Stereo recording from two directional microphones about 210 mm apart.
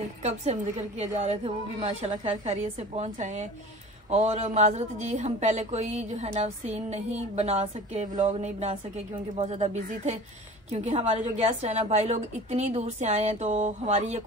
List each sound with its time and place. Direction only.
0.2 s a woman's voice: 30° right (ahead or behind)